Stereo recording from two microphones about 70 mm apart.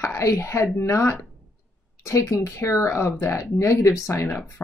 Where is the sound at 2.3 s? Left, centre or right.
Left.